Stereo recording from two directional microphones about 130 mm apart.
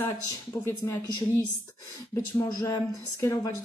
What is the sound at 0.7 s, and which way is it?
Speech, 20° left (ahead or behind).